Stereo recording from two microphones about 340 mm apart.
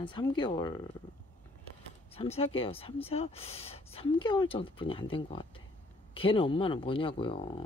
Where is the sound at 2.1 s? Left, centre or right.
Centre.